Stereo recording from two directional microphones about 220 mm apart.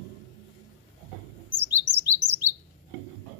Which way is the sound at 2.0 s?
10° right (ahead or behind).